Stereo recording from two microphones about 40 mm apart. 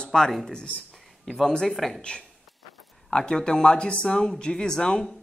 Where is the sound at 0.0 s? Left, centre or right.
Centre.